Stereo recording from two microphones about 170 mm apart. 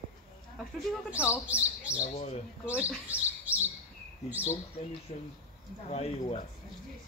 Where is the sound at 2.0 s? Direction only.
40° left (ahead or behind).